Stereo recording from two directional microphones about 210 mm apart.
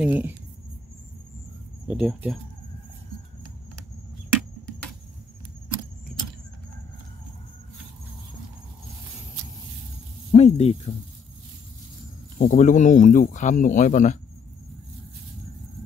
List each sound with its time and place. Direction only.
0.0 s speech: 5° right (ahead or behind)
1.9 s speech: 5° right (ahead or behind)
10.3 s speech: 30° left (ahead or behind)
12.4 s speech: 40° left (ahead or behind)